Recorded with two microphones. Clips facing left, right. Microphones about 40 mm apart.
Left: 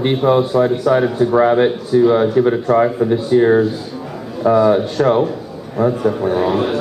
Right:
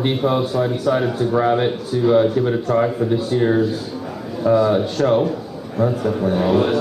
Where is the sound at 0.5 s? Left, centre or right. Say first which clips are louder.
Left 5 dB; centre.